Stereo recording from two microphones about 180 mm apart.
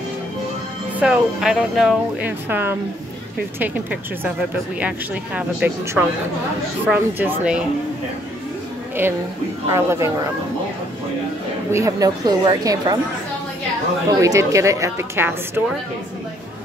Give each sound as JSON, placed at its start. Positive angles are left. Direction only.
{"t": 0.9, "sound": "speech", "side_deg": -5}
{"t": 9.0, "sound": "speech", "side_deg": -10}
{"t": 11.7, "sound": "a woman's voice", "side_deg": -20}
{"t": 14.2, "sound": "speech", "side_deg": -15}